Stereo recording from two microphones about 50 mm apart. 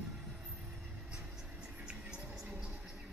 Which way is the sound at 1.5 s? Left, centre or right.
Right.